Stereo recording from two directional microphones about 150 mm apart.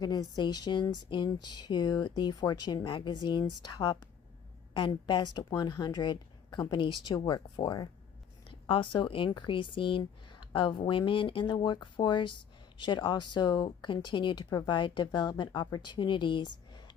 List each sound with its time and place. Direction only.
0.0 s speech: 25° left (ahead or behind)